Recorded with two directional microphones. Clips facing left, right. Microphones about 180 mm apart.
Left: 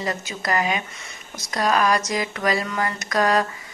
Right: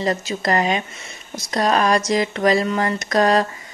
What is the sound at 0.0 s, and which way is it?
Speech, 35° right (ahead or behind).